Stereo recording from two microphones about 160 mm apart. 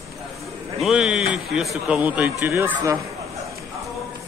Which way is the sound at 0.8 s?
5° right (ahead or behind).